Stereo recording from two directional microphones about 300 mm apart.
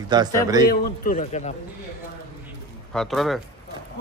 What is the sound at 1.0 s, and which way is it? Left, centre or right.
Speech, left.